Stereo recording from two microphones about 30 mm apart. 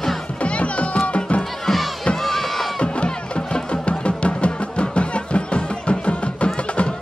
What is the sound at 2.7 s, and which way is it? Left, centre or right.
Music, left.